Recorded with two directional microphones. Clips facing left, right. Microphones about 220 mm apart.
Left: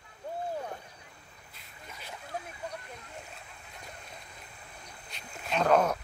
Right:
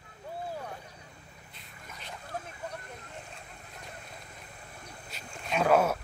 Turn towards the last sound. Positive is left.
turn(degrees=-5)  # may be behind; listen again after turning